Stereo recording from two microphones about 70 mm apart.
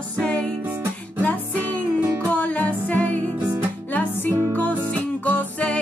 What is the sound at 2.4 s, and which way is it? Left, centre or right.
Music, centre.